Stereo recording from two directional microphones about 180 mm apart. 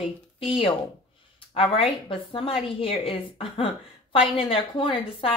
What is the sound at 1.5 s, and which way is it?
A woman's voice, 30° left (ahead or behind).